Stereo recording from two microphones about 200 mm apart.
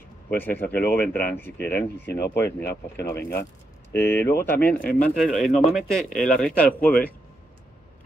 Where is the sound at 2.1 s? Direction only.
55° left (ahead or behind).